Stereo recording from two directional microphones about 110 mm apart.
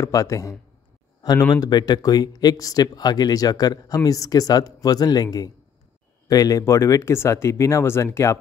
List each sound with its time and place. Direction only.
0.0 s speech: 30° left (ahead or behind)